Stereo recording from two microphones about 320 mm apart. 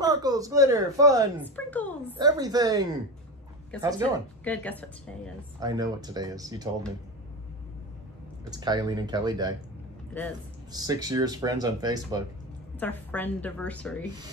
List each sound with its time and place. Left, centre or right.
0.0 s a woman's voice: centre
1.7 s speech: centre
2.1 s speech: centre
3.7 s a woman's voice: centre
5.6 s speech: centre
8.5 s speech: centre
10.7 s speech: centre
12.7 s a woman's voice: centre